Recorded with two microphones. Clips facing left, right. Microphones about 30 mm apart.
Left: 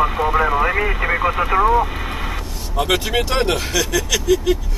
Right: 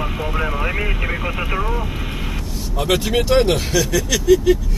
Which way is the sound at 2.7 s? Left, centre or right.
Centre.